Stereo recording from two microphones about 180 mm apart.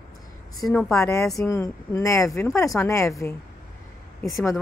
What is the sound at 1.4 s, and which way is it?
Speech, 15° left (ahead or behind).